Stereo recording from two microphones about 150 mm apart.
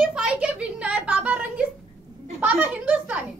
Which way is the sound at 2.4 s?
10° right (ahead or behind).